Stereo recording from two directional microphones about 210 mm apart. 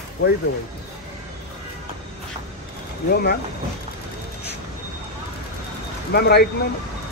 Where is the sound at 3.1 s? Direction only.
45° left (ahead or behind).